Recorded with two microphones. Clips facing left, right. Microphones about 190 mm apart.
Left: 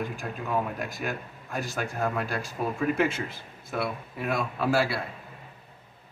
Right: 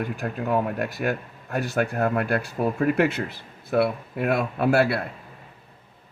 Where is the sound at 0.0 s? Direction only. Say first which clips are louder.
Right 5 dB; 65° right (ahead or behind).